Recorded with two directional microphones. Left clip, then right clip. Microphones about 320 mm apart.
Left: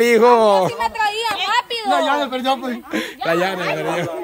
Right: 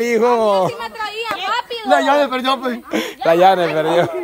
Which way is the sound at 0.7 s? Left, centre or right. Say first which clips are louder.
Left 5 dB; left.